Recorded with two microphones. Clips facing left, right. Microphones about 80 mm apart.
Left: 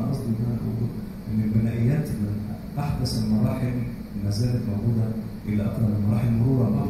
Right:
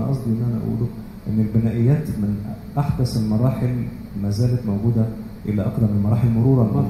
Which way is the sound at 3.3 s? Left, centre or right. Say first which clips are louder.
Right 2 dB; right.